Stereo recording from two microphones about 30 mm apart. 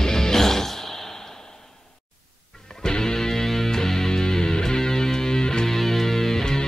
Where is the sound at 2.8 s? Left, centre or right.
Left.